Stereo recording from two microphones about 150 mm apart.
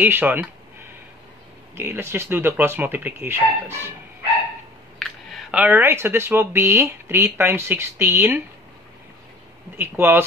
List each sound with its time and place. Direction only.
0.0 s speech: 15° right (ahead or behind)
4.9 s a sound: centre (ahead or behind)
5.6 s speech: 15° right (ahead or behind)
9.8 s speech: 15° right (ahead or behind)